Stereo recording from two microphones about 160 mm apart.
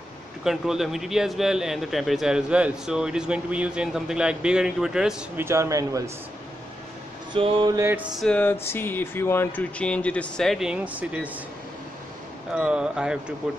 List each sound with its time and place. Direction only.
0.4 s a man's voice: centre (ahead or behind)
5.4 s a man's voice: 20° right (ahead or behind)
7.3 s a sound: 35° right (ahead or behind)
7.8 s a sound: 10° right (ahead or behind)
8.2 s speech: 10° left (ahead or behind); by 11.2 s 10° right (ahead or behind)
12.5 s a man's voice: 5° right (ahead or behind)